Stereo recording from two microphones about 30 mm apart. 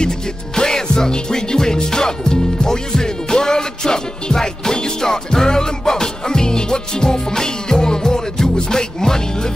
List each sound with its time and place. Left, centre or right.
0.6 s music: left